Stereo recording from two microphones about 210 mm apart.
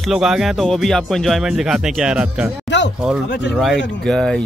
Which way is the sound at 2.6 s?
60° left (ahead or behind).